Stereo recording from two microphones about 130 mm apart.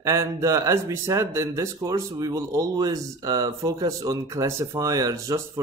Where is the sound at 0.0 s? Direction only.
20° right (ahead or behind).